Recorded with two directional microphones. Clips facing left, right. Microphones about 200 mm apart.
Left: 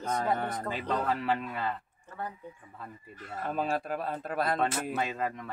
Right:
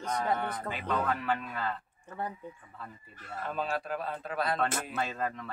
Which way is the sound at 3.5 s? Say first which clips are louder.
Left 2 dB; 45° left (ahead or behind).